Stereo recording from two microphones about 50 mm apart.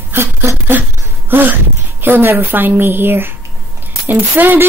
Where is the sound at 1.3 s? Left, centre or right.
Right.